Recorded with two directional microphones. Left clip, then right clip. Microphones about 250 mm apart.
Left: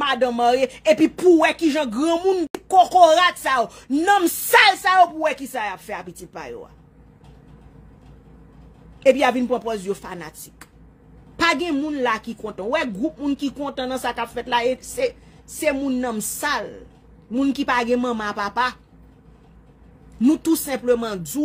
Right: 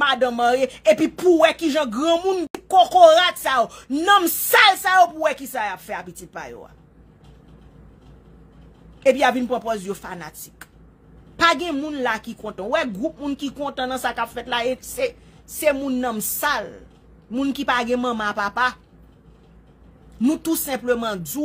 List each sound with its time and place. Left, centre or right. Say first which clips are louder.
0.0 s speech: even; centre
9.0 s a woman's voice: left 1 dB; centre
20.2 s speech: left 3 dB; centre